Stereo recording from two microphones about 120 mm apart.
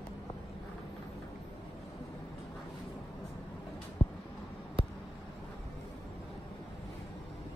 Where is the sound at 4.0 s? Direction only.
45° left (ahead or behind).